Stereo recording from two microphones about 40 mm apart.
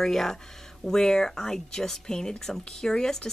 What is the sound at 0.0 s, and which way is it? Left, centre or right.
Speech, centre.